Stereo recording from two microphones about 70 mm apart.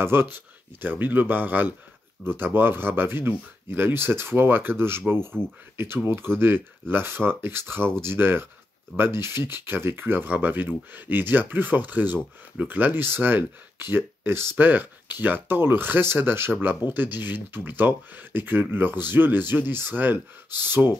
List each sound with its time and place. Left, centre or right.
0.0 s speech: right